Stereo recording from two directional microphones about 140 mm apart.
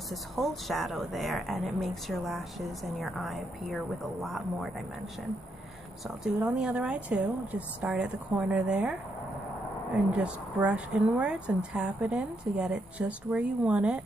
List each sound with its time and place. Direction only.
0.1 s a woman's voice: centre (ahead or behind)
6.4 s a woman's voice: 10° right (ahead or behind)
10.1 s a woman's voice: 10° right (ahead or behind)